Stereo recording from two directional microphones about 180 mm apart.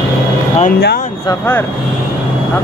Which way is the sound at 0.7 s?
60° left (ahead or behind).